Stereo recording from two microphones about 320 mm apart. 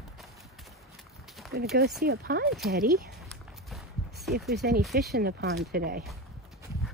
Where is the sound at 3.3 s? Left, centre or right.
Centre.